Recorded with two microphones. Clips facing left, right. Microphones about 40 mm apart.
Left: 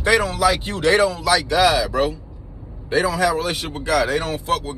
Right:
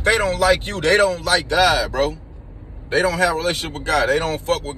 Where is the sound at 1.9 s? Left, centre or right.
Right.